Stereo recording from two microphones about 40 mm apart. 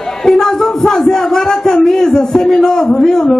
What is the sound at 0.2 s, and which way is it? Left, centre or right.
A man's voice, centre.